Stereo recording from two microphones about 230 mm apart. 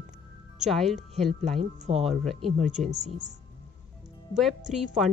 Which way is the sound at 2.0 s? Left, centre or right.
Centre.